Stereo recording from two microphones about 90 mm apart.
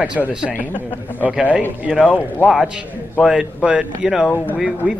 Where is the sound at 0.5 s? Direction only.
20° left (ahead or behind).